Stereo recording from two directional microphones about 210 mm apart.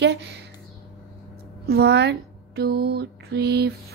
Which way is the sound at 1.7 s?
50° right (ahead or behind).